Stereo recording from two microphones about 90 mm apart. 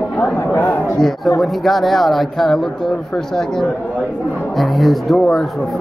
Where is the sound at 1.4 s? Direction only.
Centre (ahead or behind).